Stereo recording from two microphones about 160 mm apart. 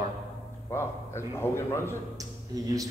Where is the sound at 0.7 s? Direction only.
15° left (ahead or behind).